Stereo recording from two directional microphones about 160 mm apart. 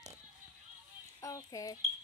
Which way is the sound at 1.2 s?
20° left (ahead or behind).